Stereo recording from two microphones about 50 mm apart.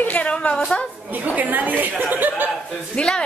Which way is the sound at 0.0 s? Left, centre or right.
Left.